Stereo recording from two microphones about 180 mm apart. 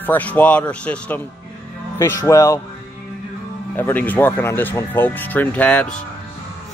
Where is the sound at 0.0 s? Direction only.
10° left (ahead or behind).